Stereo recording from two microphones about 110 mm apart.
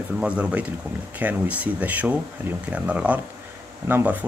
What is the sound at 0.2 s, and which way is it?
Speech, 10° right (ahead or behind).